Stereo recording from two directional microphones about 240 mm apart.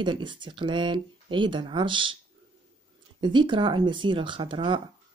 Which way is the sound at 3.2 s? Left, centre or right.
Centre.